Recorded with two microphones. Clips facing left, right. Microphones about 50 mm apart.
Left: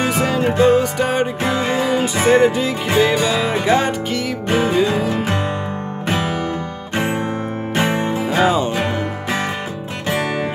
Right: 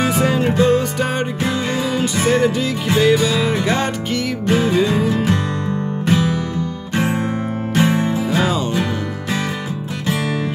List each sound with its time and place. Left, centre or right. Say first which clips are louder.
0.0 s music: right 1 dB; centre
0.5 s music: left 2 dB; centre
1.4 s music: left 2 dB; left
4.5 s music: right 1 dB; left
4.7 s music: even; centre
5.1 s music: right 2 dB; left
6.0 s music: right 2 dB; left
7.7 s music: right 2 dB; left
8.4 s music: left 5 dB; centre